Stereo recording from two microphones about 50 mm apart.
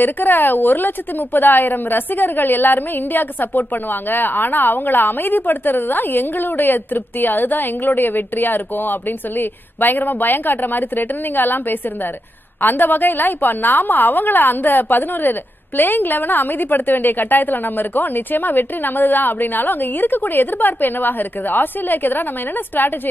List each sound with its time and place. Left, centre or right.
0.0 s a woman's voice: left